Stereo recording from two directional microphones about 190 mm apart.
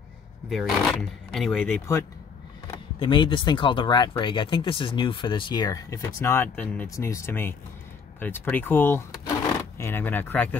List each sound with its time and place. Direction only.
0.5 s speech: centre (ahead or behind)
3.0 s speech: 25° left (ahead or behind); by 10.6 s 10° left (ahead or behind)